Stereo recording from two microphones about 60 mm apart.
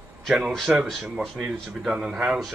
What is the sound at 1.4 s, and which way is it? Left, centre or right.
Speech, centre.